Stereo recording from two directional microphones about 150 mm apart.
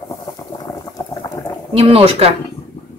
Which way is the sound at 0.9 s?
25° left (ahead or behind).